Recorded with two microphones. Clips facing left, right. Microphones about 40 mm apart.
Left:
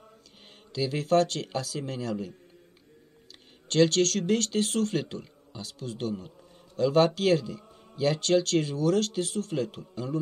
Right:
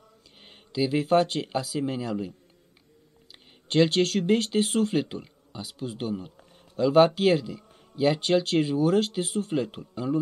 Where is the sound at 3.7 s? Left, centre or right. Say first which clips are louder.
Right 1 dB; centre.